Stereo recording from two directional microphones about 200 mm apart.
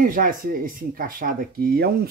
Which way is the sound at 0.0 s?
45° right (ahead or behind).